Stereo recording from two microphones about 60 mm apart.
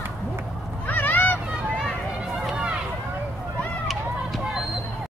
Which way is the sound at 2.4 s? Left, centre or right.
Centre.